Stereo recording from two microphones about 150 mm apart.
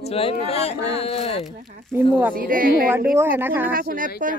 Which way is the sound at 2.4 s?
70° right (ahead or behind).